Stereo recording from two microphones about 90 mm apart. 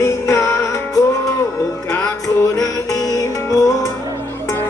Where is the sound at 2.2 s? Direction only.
40° left (ahead or behind).